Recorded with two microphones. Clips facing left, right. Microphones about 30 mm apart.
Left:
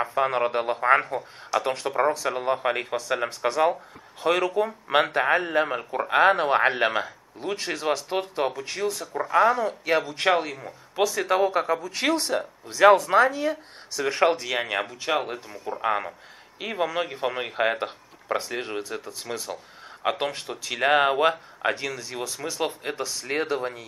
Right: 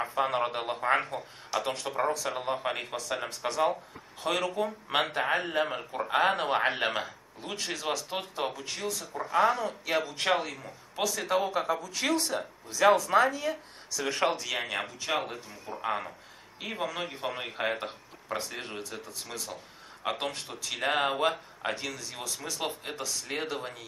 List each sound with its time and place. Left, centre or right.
0.0 s a man's voice: centre
7.5 s a man's voice: left
9.4 s a man's voice: centre
15.8 s a man's voice: left